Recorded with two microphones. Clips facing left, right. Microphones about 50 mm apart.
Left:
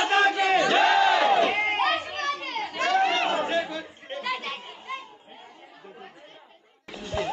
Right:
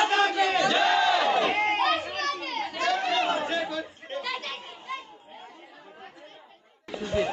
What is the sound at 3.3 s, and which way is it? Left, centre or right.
Chatter, centre.